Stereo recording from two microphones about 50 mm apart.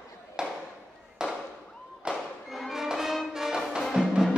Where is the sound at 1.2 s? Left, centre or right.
Centre.